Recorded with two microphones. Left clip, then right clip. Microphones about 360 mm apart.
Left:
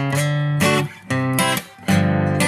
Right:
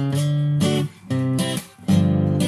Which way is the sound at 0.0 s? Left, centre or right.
Left.